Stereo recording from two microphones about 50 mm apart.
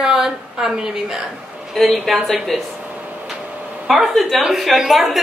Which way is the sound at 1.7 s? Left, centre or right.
Centre.